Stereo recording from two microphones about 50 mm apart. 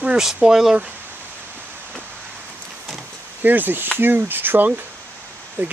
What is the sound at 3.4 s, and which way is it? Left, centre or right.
Speech, right.